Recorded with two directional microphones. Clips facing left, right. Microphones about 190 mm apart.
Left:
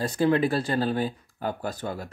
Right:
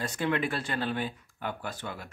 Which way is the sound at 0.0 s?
35° left (ahead or behind).